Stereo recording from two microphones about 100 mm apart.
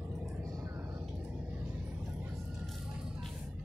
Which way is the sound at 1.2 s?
15° right (ahead or behind).